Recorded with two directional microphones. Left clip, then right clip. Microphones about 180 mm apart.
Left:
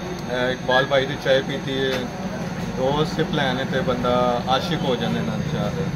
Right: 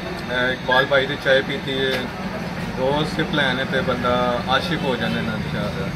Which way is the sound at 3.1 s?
25° left (ahead or behind).